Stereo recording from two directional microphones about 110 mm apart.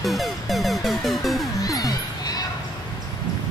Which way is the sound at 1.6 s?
30° left (ahead or behind).